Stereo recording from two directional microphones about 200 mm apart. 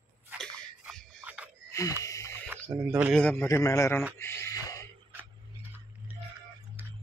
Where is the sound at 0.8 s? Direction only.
Centre (ahead or behind).